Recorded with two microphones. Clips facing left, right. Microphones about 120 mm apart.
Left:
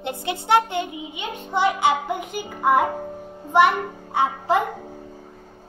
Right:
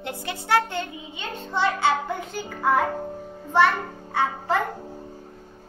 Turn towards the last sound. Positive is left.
turn(degrees=15)  # may be behind; listen again after turning